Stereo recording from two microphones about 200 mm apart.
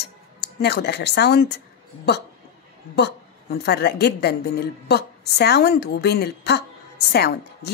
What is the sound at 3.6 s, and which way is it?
A woman's voice, 55° left (ahead or behind).